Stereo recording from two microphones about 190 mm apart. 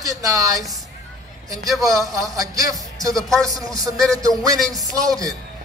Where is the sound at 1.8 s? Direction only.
15° right (ahead or behind).